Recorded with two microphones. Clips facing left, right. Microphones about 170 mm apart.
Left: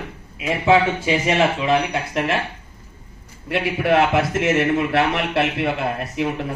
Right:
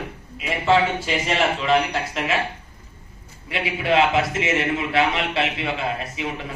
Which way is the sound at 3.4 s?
55° left (ahead or behind).